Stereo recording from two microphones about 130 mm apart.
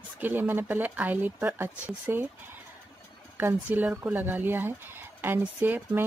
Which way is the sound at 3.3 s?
15° right (ahead or behind).